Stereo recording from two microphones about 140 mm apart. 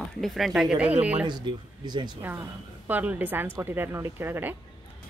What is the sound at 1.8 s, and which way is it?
Speech, 30° right (ahead or behind).